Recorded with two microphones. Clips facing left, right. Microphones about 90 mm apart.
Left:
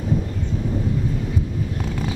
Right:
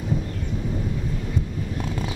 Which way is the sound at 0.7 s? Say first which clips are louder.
Left 5 dB; 5° left (ahead or behind).